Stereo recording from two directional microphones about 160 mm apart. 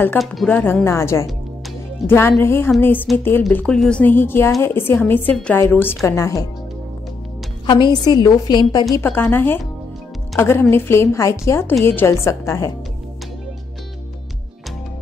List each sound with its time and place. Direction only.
0.2 s a woman's voice: centre (ahead or behind); by 6.4 s 20° left (ahead or behind)
7.6 s a woman's voice: 30° left (ahead or behind)
9.0 s a woman's voice: 10° left (ahead or behind)